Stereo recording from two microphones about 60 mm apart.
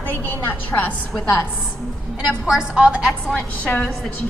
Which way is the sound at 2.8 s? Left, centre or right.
Right.